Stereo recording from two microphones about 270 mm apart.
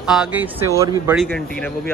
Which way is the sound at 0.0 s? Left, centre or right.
Centre.